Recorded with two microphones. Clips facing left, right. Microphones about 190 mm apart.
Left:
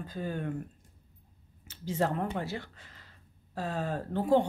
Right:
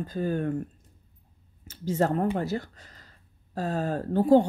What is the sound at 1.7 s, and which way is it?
Speech, 40° right (ahead or behind).